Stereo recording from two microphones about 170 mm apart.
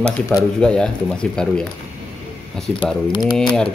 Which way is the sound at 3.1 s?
25° left (ahead or behind).